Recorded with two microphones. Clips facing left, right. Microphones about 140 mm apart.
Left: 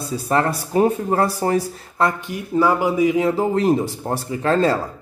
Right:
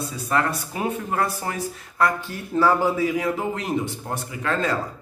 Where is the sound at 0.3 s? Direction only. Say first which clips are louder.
Left 5 dB; 35° left (ahead or behind).